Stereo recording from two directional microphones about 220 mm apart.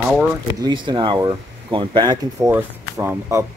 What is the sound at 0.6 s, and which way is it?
Speech, 20° right (ahead or behind).